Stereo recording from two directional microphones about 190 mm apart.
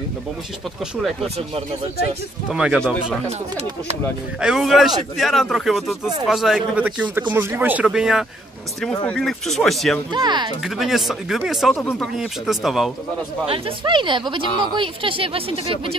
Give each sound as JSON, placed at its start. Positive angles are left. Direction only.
{"t": 2.5, "sound": "speech", "side_deg": -5}
{"t": 4.4, "sound": "speech", "side_deg": -5}
{"t": 10.1, "sound": "speech", "side_deg": -25}
{"t": 10.6, "sound": "speech", "side_deg": 0}
{"t": 12.2, "sound": "speech", "side_deg": 0}
{"t": 13.5, "sound": "speech", "side_deg": -25}